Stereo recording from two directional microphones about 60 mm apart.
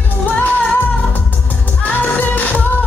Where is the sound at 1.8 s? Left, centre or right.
Left.